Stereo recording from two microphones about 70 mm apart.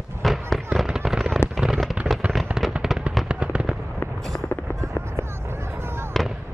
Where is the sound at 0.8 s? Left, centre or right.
Centre.